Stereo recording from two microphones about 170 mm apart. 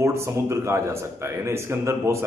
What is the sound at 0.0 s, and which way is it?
Speech, 15° right (ahead or behind).